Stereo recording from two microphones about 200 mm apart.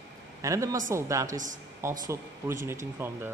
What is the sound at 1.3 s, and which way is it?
Speech, 40° right (ahead or behind).